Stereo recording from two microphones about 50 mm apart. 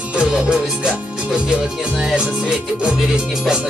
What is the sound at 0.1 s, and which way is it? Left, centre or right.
Music, centre.